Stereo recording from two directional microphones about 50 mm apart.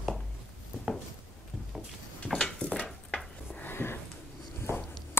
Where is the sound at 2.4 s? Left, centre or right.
Centre.